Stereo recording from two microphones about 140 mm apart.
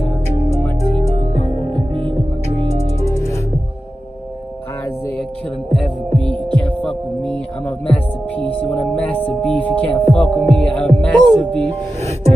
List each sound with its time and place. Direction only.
0.9 s music: 40° right (ahead or behind)
5.7 s hum: 5° left (ahead or behind)
6.6 s heart sounds: 5° left (ahead or behind)
7.8 s music: 10° left (ahead or behind)